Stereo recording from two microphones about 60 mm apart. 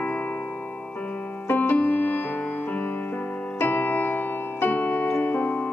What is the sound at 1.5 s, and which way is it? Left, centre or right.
Music, left.